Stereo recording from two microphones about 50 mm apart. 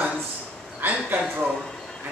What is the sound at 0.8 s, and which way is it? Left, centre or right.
Speech, right.